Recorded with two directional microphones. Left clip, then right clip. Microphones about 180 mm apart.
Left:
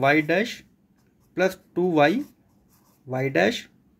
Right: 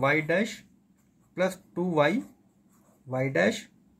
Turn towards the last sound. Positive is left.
turn(degrees=50)  # may be behind; listen again after turning